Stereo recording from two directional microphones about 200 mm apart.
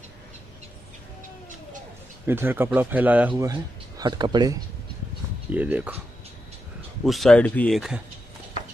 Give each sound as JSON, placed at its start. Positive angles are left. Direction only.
{"t": 2.2, "sound": "speech", "side_deg": -10}
{"t": 4.0, "sound": "speech", "side_deg": -20}
{"t": 5.5, "sound": "speech", "side_deg": -10}
{"t": 7.1, "sound": "speech", "side_deg": 0}